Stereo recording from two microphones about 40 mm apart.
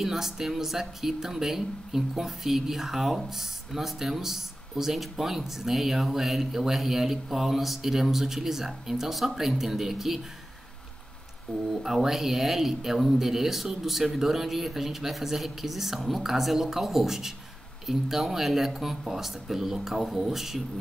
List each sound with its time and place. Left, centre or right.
0.0 s speech: centre
11.5 s speech: left
11.8 s speech: centre